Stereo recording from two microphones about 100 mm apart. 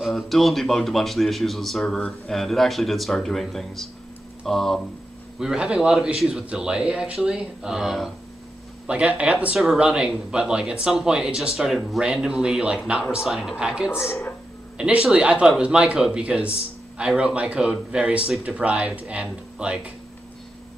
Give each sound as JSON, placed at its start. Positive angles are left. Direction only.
{"t": 0.1, "sound": "a man's voice", "side_deg": 0}
{"t": 5.4, "sound": "a man's voice", "side_deg": -10}
{"t": 13.9, "sound": "speech", "side_deg": 25}
{"t": 14.8, "sound": "speech", "side_deg": -10}